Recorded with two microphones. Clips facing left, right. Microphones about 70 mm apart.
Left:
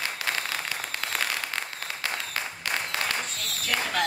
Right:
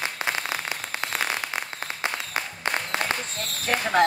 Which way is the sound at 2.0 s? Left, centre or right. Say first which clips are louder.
Right 3 dB; right.